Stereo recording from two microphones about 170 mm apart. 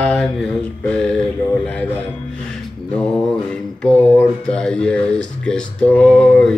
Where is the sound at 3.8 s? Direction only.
5° left (ahead or behind).